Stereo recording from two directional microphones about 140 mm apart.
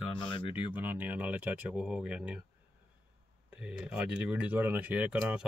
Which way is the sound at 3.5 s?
10° right (ahead or behind).